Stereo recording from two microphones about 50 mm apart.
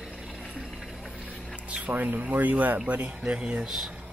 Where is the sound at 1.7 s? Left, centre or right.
Right.